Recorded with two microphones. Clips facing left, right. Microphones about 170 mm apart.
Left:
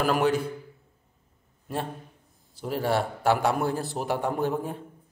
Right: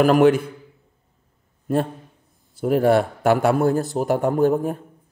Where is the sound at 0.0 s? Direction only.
50° right (ahead or behind).